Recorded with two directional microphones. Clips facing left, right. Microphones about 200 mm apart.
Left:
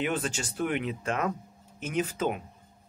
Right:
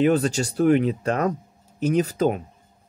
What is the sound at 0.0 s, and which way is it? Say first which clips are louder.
Speech: right 11 dB; 40° right (ahead or behind).